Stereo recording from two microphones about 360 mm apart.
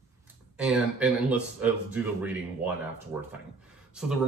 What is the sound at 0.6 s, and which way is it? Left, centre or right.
Speech, centre.